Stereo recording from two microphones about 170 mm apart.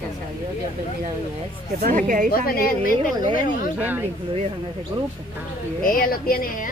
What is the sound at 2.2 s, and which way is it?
Speech, 60° left (ahead or behind).